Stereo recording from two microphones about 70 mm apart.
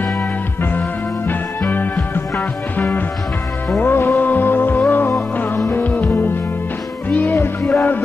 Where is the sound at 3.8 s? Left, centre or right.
Left.